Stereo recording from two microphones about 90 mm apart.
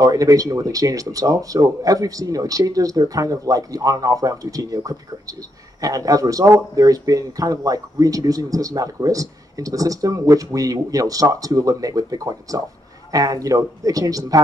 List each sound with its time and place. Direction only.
0.0 s speech: 40° right (ahead or behind)